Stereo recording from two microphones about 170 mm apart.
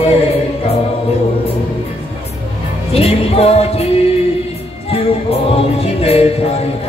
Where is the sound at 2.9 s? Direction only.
35° left (ahead or behind).